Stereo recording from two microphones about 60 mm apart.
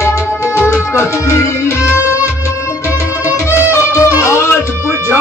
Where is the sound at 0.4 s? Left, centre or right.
Left.